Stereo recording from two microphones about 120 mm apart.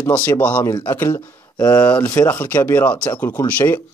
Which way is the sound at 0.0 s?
15° left (ahead or behind).